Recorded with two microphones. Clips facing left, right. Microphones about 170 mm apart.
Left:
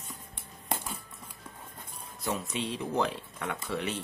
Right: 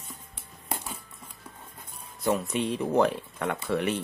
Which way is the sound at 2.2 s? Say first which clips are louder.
Right 7 dB; 55° right (ahead or behind).